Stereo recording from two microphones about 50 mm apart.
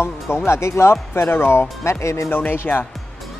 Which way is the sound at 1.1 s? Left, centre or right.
Left.